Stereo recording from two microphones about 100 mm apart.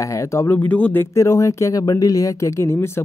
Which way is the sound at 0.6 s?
15° left (ahead or behind).